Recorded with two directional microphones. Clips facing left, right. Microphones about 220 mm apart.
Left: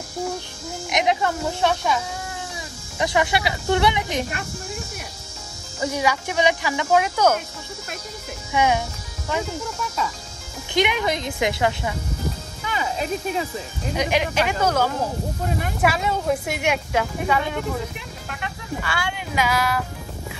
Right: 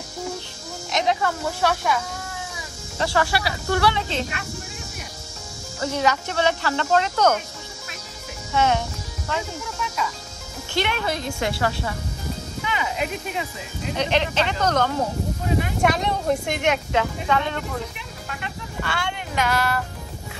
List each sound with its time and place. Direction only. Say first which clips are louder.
0.9 s speech: left 1 dB; 20° left (ahead or behind)
3.0 s speech: left 1 dB; 15° left (ahead or behind)
5.8 s speech: even; 10° left (ahead or behind)
8.5 s speech: left 1 dB; 10° left (ahead or behind)
10.7 s speech: left 3 dB; 15° left (ahead or behind)
12.6 s a sound: left 1 dB; 40° left (ahead or behind)
13.9 s a woman's voice: left 1 dB; 10° left (ahead or behind)
18.8 s speech: right 2 dB; 5° left (ahead or behind)